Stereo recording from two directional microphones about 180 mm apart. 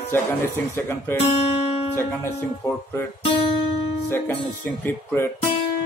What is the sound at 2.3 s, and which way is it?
Speech, 15° left (ahead or behind).